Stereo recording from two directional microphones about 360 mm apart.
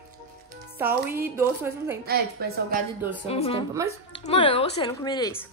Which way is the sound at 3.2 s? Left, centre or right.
Centre.